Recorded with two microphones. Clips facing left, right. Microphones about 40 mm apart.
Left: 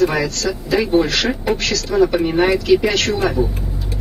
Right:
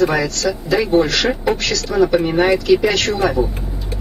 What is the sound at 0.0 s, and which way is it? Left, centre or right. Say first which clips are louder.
Speech: right 1 dB; centre.